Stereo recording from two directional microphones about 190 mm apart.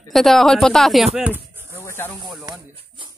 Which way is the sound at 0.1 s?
Centre (ahead or behind).